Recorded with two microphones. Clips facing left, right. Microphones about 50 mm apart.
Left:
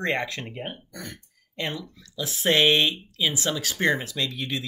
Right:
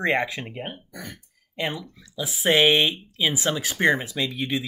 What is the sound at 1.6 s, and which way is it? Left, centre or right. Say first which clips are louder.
Speech: right 2 dB; centre.